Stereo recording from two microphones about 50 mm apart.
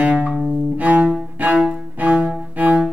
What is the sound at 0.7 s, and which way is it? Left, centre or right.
Cello, right.